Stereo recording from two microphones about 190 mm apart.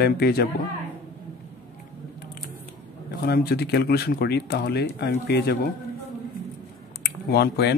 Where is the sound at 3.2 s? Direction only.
55° left (ahead or behind).